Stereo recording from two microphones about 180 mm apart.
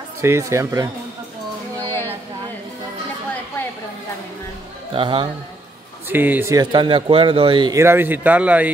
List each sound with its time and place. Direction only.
0.2 s speech: 15° right (ahead or behind)
1.9 s a sound: 15° left (ahead or behind)
4.9 s speech: 30° right (ahead or behind)
6.0 s speech: 10° right (ahead or behind); by 7.8 s 25° right (ahead or behind)
7.8 s speech: 10° right (ahead or behind)